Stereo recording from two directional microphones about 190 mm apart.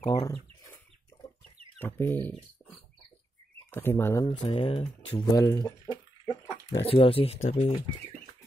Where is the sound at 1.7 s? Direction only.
10° left (ahead or behind).